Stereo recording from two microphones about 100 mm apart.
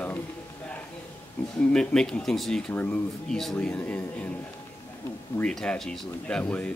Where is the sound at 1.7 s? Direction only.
10° left (ahead or behind).